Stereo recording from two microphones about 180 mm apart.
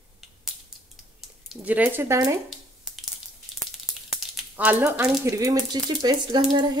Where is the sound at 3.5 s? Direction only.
Centre (ahead or behind).